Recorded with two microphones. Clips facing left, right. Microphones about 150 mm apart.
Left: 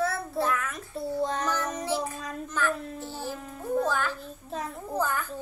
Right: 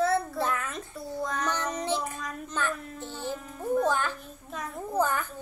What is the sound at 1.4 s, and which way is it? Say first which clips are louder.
Speech: even; 20° right (ahead or behind).